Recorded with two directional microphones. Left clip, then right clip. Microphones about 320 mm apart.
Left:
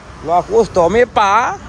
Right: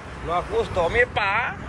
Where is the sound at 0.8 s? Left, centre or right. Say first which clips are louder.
Left 9 dB; left.